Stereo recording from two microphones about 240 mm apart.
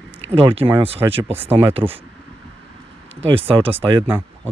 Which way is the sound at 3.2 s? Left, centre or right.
Right.